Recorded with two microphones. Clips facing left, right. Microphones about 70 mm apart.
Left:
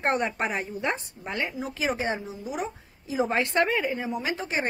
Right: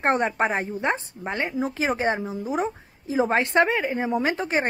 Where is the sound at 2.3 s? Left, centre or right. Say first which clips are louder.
Right 6 dB; right.